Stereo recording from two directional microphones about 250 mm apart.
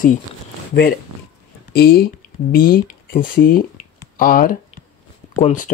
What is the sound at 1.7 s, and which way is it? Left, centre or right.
Speech, left.